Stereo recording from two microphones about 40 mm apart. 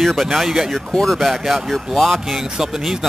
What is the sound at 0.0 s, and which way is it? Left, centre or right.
Speech, centre.